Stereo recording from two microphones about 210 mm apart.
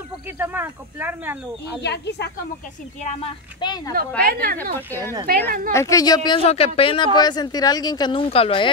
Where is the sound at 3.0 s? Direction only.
30° left (ahead or behind).